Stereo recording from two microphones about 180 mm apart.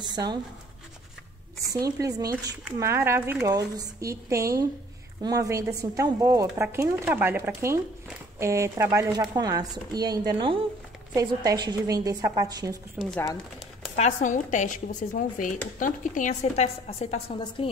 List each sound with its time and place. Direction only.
0.0 s speech: 25° right (ahead or behind)
1.7 s speech: 20° right (ahead or behind)
13.0 s speech: 5° right (ahead or behind)
13.9 s a woman's voice: 40° left (ahead or behind)